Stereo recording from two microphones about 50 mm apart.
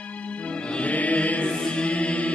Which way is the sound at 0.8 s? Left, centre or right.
Left.